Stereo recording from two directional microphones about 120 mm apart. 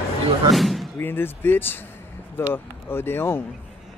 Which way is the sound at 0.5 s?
Centre (ahead or behind).